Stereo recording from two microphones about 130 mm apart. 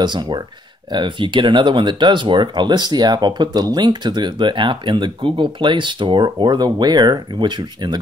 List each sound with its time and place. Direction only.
0.0 s speech: 35° right (ahead or behind)